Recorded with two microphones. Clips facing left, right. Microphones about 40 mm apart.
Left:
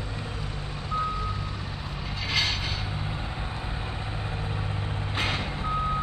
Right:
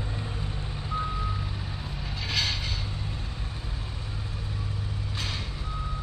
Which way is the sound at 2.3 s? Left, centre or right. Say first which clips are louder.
Left 2 dB; centre.